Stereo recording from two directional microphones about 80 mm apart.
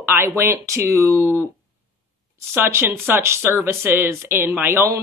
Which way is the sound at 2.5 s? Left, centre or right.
Right.